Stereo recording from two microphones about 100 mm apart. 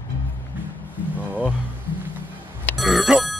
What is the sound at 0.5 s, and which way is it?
Music, 20° right (ahead or behind).